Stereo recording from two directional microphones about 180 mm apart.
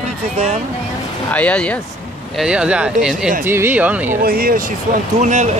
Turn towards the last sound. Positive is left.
turn(degrees=-40)  # may be behind; listen again after turning